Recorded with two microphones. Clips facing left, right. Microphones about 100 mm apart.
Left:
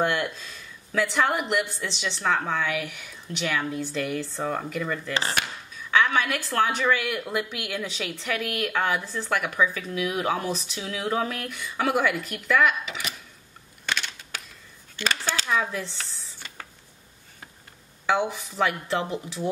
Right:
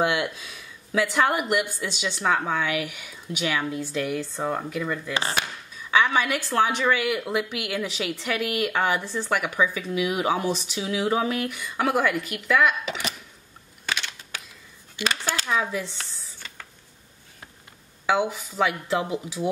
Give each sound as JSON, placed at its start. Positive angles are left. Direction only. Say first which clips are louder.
{"t": 0.0, "sound": "speech", "louder": "right 1 dB", "side_deg": -10}
{"t": 5.1, "sound": "speech", "louder": "even", "side_deg": -15}
{"t": 6.1, "sound": "speech", "louder": "right 2 dB", "side_deg": -5}
{"t": 15.0, "sound": "speech", "louder": "right 1 dB", "side_deg": -10}
{"t": 18.0, "sound": "speech", "louder": "right 1 dB", "side_deg": -5}